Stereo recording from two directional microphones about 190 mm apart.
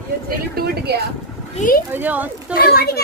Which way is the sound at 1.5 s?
45° left (ahead or behind).